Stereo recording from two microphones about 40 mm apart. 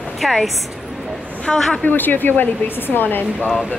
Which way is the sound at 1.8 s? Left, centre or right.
Left.